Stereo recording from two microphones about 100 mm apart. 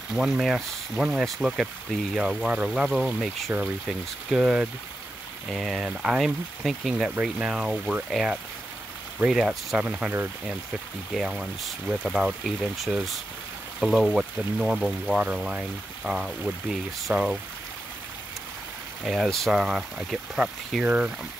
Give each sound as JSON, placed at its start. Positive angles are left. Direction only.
{"t": 0.1, "sound": "speech", "side_deg": 0}
{"t": 9.8, "sound": "speech", "side_deg": -15}
{"t": 11.1, "sound": "speech", "side_deg": 0}
{"t": 19.0, "sound": "speech", "side_deg": 0}
{"t": 20.8, "sound": "speech", "side_deg": -15}